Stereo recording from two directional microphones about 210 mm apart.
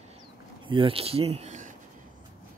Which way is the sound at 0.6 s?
25° right (ahead or behind).